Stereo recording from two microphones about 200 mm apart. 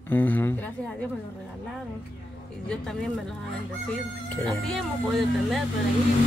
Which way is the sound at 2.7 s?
5° left (ahead or behind).